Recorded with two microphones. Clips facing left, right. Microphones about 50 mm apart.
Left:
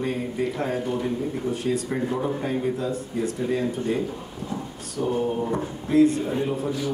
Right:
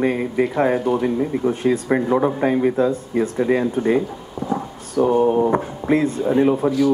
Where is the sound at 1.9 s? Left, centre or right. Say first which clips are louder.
Right 8 dB; right.